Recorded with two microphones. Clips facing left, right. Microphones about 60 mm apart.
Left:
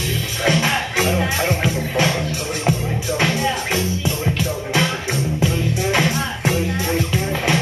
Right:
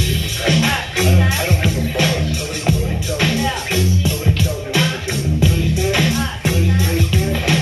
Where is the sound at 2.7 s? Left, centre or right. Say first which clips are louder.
Right 1 dB; left.